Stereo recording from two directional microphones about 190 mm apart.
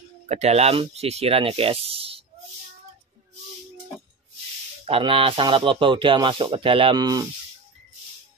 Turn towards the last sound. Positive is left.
turn(degrees=-20)  # may be behind; listen again after turning